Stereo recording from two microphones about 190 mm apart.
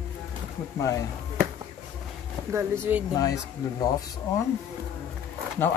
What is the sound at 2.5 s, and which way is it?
Speech, 15° right (ahead or behind).